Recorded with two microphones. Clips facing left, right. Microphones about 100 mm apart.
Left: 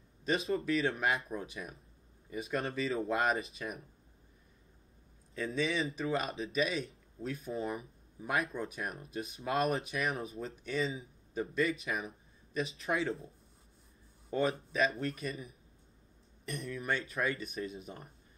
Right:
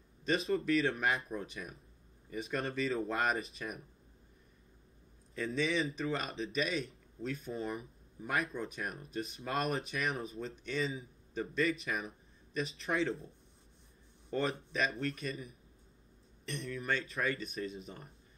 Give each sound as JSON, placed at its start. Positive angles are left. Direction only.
{"t": 0.2, "sound": "speech", "side_deg": 0}
{"t": 5.3, "sound": "speech", "side_deg": 0}
{"t": 14.3, "sound": "speech", "side_deg": 5}
{"t": 16.4, "sound": "speech", "side_deg": 5}